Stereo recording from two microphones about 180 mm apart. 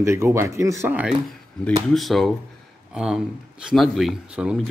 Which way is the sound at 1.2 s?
Centre (ahead or behind).